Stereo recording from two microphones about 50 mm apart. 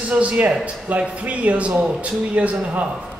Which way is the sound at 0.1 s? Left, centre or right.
Right.